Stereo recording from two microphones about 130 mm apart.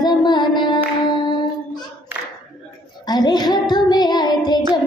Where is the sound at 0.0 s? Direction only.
35° left (ahead or behind).